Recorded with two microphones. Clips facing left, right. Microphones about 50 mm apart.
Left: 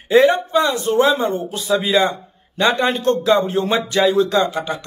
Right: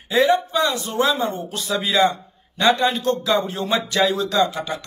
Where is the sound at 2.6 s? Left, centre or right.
Left.